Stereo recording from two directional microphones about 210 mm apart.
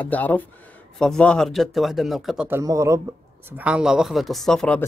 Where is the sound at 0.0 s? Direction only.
10° left (ahead or behind); by 3.0 s 15° right (ahead or behind).